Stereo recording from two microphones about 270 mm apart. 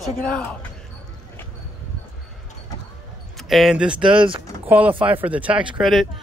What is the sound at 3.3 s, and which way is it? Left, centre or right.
Speech, centre.